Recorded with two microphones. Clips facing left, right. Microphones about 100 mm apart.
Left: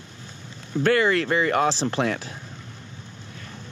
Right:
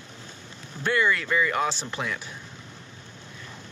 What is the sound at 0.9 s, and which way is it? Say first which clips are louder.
Speech: left 2 dB; 90° left.